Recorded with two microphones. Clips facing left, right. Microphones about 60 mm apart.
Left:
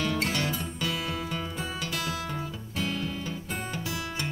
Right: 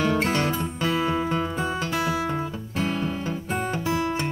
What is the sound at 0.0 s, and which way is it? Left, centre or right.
Music, right.